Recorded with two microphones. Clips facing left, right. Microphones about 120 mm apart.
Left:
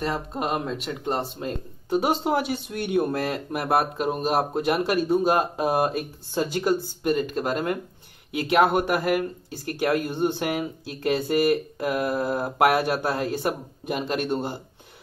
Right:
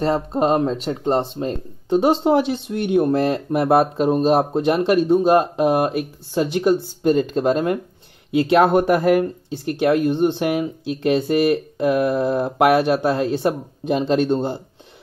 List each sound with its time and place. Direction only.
0.0 s speech: 30° right (ahead or behind)
9.5 s speech: 20° right (ahead or behind)